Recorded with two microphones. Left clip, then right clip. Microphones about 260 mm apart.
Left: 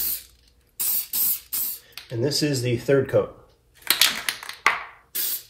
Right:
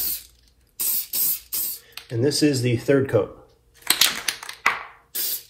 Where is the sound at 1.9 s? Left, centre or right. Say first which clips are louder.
Right 2 dB; right.